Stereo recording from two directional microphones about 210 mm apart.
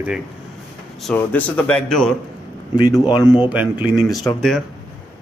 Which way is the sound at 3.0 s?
20° left (ahead or behind).